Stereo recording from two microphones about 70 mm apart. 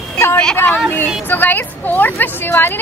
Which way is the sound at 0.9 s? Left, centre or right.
Left.